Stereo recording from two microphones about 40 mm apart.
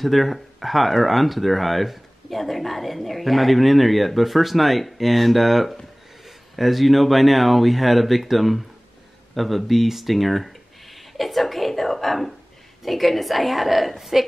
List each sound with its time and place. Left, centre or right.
0.0 s speech: centre
9.3 s a sound: centre
12.8 s speech: centre